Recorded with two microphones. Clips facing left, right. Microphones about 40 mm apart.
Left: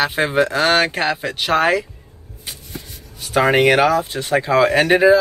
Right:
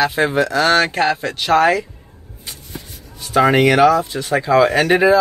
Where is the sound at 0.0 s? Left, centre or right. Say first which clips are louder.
Right 1 dB; left.